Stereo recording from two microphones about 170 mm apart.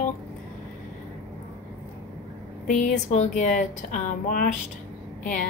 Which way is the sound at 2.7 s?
45° left (ahead or behind).